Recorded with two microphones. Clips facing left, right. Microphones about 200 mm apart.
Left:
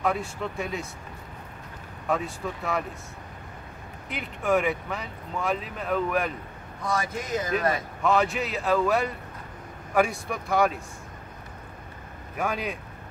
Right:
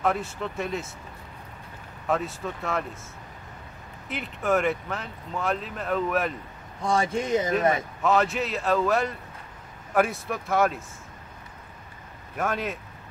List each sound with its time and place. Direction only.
0.0 s speech: centre (ahead or behind)
2.0 s speech: centre (ahead or behind)
4.1 s speech: centre (ahead or behind)
6.8 s speech: 30° right (ahead or behind)
8.0 s speech: centre (ahead or behind)
12.4 s speech: centre (ahead or behind)